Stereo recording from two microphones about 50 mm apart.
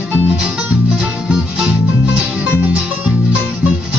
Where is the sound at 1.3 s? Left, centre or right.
Centre.